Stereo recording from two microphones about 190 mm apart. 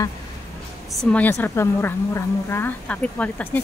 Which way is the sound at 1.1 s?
10° left (ahead or behind).